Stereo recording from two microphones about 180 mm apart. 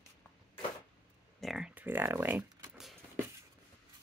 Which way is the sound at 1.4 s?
5° right (ahead or behind).